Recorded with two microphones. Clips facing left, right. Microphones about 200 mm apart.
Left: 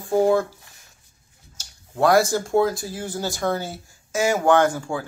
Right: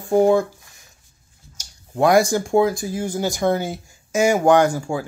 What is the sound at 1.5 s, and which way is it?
Speech, 15° right (ahead or behind).